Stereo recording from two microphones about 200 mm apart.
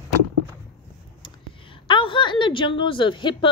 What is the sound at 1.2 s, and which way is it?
A woman's voice, 25° left (ahead or behind).